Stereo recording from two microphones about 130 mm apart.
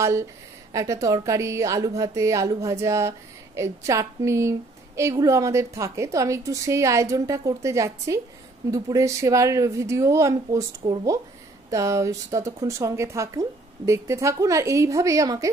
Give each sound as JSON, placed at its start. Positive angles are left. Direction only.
{"t": 0.0, "sound": "a woman's voice", "side_deg": -20}
{"t": 11.7, "sound": "a woman's voice", "side_deg": -25}